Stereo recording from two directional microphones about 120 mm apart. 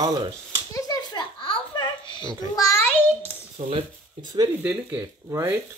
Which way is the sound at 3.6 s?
75° right (ahead or behind).